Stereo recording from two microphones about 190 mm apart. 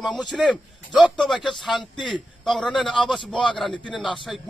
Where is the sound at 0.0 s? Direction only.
Centre (ahead or behind).